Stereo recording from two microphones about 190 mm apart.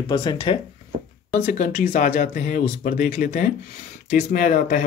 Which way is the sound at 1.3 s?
40° left (ahead or behind).